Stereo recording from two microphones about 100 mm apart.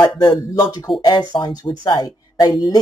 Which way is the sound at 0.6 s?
35° left (ahead or behind).